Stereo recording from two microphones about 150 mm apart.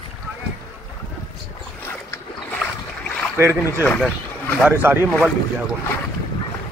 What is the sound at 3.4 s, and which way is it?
Speech, 15° right (ahead or behind).